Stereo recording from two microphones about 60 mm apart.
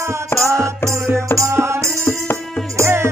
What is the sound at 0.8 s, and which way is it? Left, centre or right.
Music, right.